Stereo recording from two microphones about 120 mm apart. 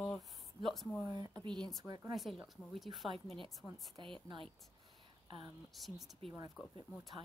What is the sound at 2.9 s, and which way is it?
Speech, 50° right (ahead or behind).